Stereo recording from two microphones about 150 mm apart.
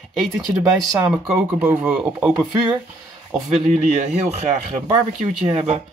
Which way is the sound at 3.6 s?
50° right (ahead or behind).